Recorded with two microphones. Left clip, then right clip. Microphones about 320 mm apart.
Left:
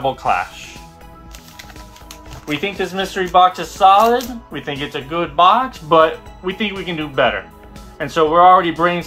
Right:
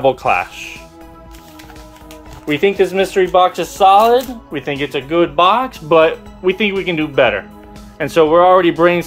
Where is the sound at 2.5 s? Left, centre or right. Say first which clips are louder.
Right 8 dB; right.